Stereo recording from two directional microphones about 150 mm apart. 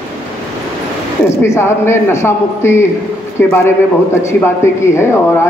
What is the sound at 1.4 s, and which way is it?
A man's voice, 15° left (ahead or behind).